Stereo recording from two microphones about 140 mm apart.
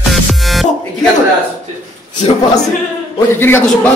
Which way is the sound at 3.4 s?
15° left (ahead or behind).